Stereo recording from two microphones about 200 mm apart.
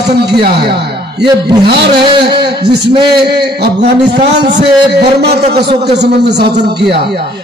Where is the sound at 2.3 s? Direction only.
55° right (ahead or behind).